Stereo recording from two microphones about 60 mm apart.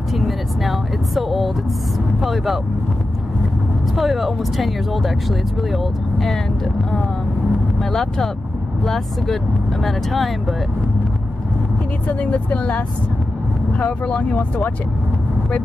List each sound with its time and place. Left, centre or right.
0.1 s vehicle: centre
2.1 s speech: centre
3.9 s speech: centre
7.9 s speech: centre
12.1 s speech: left